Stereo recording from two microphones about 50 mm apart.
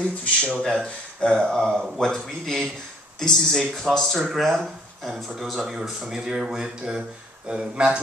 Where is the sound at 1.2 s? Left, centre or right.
Centre.